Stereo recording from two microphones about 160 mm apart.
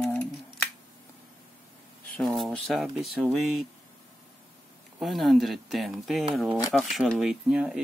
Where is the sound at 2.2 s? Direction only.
Centre (ahead or behind).